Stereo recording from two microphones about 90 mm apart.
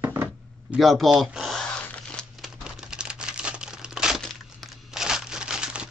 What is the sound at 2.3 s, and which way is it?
Crumpling, 5° right (ahead or behind).